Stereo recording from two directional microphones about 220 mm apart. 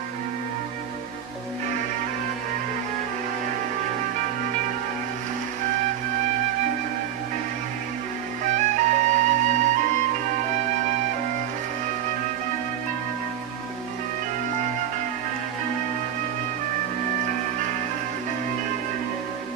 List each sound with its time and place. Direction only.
8.5 s music: 35° right (ahead or behind)